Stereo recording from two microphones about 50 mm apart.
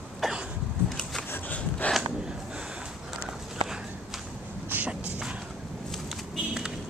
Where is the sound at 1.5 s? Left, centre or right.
Left.